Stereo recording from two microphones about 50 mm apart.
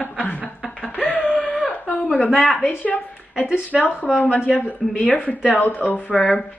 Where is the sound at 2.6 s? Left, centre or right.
Left.